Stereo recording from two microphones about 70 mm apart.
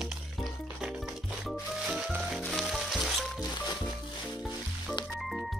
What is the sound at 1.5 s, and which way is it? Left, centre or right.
Music, centre.